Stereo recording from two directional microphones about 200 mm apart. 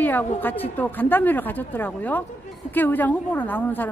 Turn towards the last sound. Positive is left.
turn(degrees=10)  # may be behind; listen again after turning